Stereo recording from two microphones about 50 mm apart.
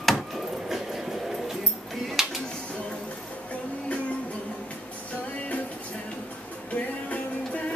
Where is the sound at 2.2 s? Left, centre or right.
Centre.